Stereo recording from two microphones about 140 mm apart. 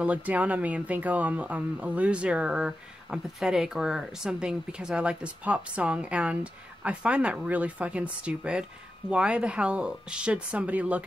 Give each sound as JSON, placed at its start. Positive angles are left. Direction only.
{"t": 0.0, "sound": "speech", "side_deg": -10}